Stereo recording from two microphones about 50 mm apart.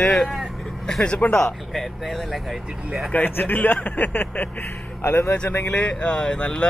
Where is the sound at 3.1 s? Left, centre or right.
Left.